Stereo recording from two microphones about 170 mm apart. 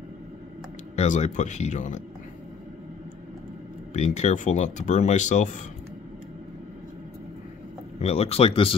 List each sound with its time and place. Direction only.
0.9 s speech: 45° left (ahead or behind)
3.9 s speech: 40° left (ahead or behind)
8.0 s speech: 35° left (ahead or behind)